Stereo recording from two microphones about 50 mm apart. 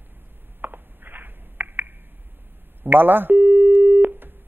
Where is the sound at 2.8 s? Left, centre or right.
Right.